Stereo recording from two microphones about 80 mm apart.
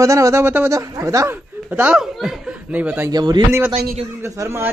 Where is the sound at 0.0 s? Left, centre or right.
Right.